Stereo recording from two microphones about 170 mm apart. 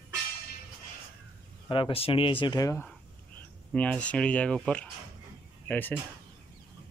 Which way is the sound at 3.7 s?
5° left (ahead or behind).